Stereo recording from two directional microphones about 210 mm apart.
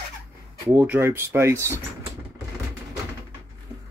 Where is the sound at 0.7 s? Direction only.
5° right (ahead or behind).